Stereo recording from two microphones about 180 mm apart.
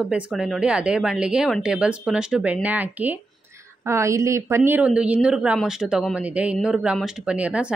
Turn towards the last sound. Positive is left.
turn(degrees=-5)  # may be behind; listen again after turning